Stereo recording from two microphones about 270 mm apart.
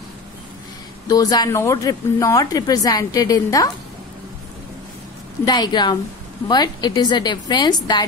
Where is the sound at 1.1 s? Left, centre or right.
Centre.